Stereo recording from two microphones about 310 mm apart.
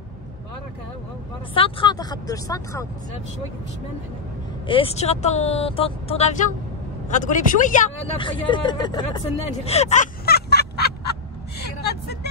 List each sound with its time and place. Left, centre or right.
1.5 s speech: centre
4.6 s speech: centre
9.7 s a sound: left